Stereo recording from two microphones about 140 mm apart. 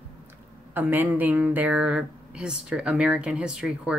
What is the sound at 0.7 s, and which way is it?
Speech, 15° right (ahead or behind).